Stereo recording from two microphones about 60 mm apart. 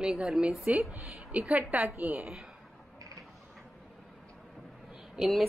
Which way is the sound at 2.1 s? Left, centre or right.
Centre.